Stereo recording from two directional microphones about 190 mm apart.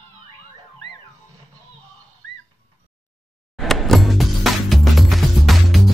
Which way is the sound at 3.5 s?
Centre (ahead or behind).